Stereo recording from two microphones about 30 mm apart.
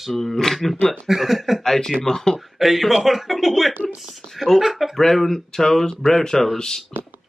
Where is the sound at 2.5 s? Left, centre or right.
Centre.